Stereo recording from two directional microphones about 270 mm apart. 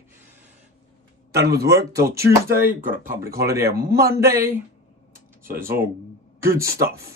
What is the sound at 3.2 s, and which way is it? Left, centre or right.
Speech, right.